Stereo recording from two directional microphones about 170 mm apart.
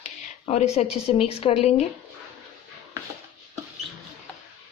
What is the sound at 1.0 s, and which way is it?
Speech, 35° left (ahead or behind).